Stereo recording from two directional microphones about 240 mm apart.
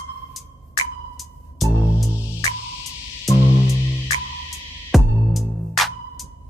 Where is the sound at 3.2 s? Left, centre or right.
Centre.